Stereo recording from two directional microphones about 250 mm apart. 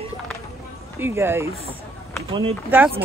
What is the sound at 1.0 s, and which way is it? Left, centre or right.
Speech, centre.